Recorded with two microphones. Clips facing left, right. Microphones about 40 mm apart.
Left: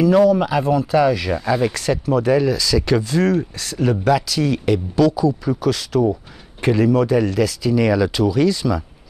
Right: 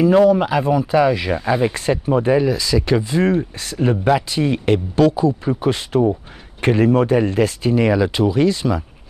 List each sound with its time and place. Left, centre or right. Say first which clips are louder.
0.0 s speech: right 1 dB; right
0.4 s speech: right 1 dB; right